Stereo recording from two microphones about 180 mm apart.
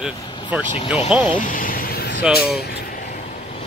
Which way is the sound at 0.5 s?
5° right (ahead or behind).